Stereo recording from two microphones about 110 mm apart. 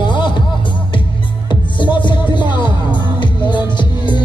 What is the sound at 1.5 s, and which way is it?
Music, 45° left (ahead or behind).